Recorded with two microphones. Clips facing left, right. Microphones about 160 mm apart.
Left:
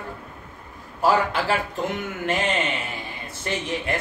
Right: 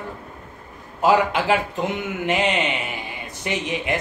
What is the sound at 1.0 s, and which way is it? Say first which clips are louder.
Speech: right 3 dB; 20° right (ahead or behind).